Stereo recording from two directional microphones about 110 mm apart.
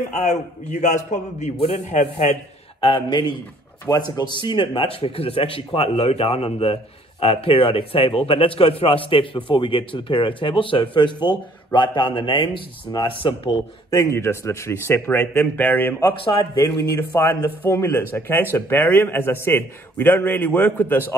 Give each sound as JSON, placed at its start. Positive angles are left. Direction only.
{"t": 0.1, "sound": "a man's voice", "side_deg": 90}
{"t": 2.8, "sound": "speech", "side_deg": 50}
{"t": 13.8, "sound": "a man's voice", "side_deg": 30}
{"t": 16.5, "sound": "a man's voice", "side_deg": 30}